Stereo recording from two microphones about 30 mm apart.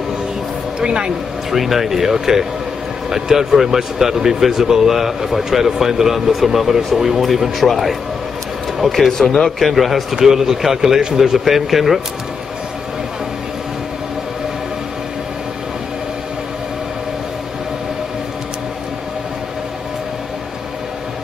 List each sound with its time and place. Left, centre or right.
0.7 s speech: right
1.5 s a man's voice: centre
8.9 s a man's voice: centre
10.1 s speech: centre